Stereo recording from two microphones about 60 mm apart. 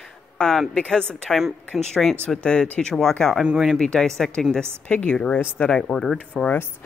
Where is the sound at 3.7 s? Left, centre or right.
Centre.